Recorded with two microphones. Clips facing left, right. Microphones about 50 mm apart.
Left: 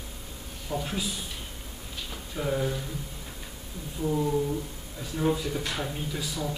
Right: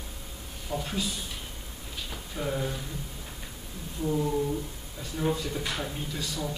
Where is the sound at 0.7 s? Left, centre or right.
Centre.